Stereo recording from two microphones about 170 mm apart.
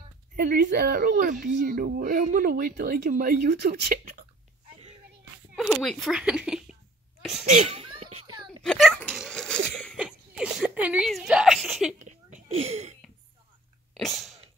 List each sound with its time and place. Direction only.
0.4 s speech: 60° right (ahead or behind)
5.6 s speech: centre (ahead or behind)
7.4 s children playing: 40° right (ahead or behind)
8.6 s a sound: centre (ahead or behind)
11.1 s a woman's voice: centre (ahead or behind)
12.0 s a sound: 45° right (ahead or behind)
13.9 s sneeze: centre (ahead or behind)